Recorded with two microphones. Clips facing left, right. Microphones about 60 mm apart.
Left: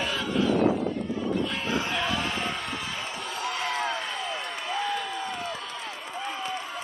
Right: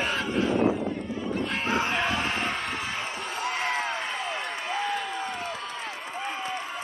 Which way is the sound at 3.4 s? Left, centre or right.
Right.